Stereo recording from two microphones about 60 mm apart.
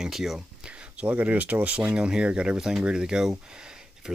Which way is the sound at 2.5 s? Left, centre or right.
Centre.